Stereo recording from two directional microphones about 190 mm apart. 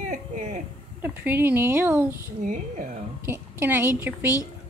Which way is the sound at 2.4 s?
45° right (ahead or behind).